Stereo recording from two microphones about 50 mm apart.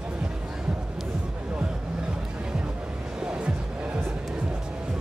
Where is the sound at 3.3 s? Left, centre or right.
Centre.